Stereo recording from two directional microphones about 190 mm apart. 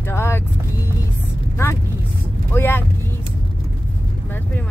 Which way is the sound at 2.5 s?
10° left (ahead or behind).